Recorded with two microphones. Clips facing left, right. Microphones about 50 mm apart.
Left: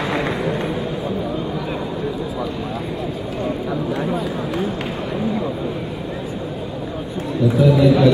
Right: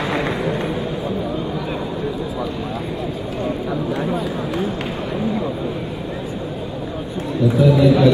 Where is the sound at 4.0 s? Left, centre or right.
Centre.